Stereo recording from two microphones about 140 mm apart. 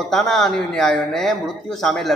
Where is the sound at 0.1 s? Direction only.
Centre (ahead or behind).